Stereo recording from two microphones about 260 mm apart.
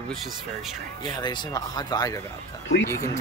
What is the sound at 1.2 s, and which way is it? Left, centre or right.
Speech, centre.